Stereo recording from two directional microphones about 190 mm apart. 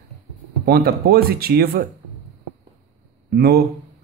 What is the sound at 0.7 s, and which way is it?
Speech, 50° right (ahead or behind).